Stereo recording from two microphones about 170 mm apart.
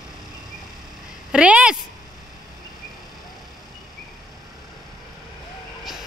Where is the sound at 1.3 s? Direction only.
5° right (ahead or behind).